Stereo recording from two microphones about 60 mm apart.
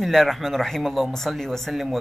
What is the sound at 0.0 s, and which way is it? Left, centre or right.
Speech, centre.